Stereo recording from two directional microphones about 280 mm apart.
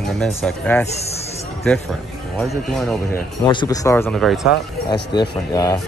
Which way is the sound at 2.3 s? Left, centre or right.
Centre.